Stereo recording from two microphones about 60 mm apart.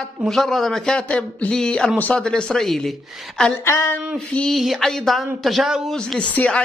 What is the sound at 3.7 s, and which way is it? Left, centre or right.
Speech, left.